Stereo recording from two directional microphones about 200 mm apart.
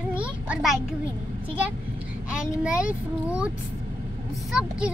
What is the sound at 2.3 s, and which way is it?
A child's voice, 5° right (ahead or behind).